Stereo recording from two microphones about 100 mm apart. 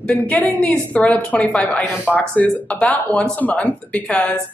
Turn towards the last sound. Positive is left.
turn(degrees=15)  # may be behind; listen again after turning